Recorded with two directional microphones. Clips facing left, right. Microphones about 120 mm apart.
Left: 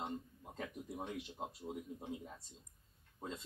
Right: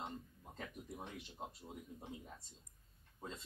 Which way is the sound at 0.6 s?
20° left (ahead or behind).